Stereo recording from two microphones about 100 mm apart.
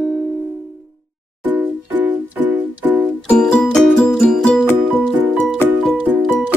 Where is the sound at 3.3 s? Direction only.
10° left (ahead or behind).